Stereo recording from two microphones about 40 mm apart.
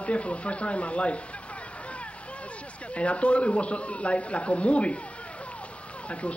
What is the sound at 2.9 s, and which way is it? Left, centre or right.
Speech, left.